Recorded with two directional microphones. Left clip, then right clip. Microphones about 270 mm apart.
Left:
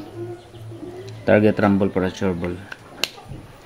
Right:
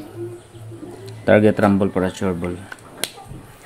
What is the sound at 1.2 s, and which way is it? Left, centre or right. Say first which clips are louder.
Speech: right 2 dB; centre.